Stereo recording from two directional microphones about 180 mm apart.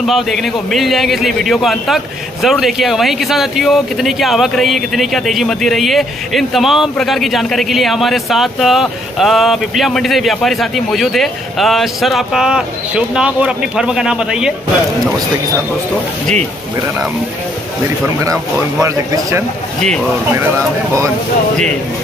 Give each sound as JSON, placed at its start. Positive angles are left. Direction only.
{"t": 0.0, "sound": "speech", "side_deg": 0}
{"t": 18.2, "sound": "speech", "side_deg": -20}